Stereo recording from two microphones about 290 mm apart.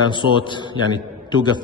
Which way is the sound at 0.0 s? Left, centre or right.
Centre.